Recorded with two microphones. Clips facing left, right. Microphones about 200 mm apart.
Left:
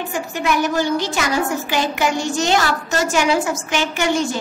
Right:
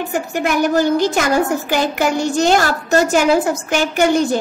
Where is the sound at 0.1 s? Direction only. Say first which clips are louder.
Right 2 dB; 50° right (ahead or behind).